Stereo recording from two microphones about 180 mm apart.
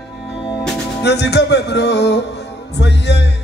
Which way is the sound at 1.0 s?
70° left (ahead or behind).